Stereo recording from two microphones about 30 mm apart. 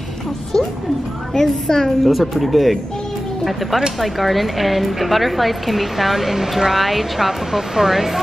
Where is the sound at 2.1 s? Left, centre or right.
Centre.